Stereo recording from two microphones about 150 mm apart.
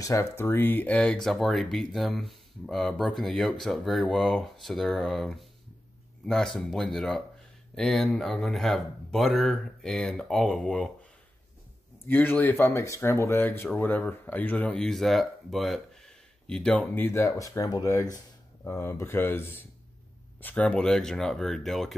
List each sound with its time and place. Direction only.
0.0 s speech: 20° left (ahead or behind)
12.1 s speech: 10° left (ahead or behind)